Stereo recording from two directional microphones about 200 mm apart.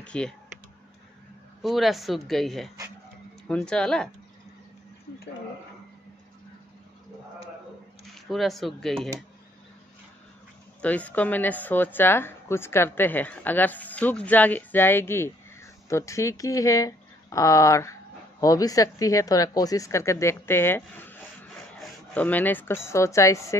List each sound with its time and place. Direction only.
0.0 s computer keyboard: 5° left (ahead or behind)
1.6 s speech: centre (ahead or behind)
8.3 s speech: centre (ahead or behind)
10.8 s a woman's voice: 5° left (ahead or behind)